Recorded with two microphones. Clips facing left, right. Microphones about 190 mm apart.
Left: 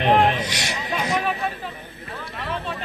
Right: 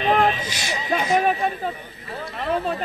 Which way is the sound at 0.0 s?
70° left (ahead or behind).